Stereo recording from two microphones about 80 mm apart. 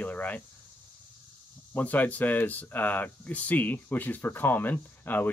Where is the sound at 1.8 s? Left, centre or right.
Left.